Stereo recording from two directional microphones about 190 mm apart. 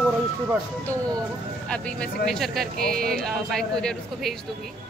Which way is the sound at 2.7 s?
50° right (ahead or behind).